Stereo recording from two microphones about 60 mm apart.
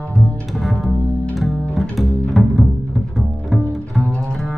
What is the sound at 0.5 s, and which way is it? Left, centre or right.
Bowed string instrument, centre.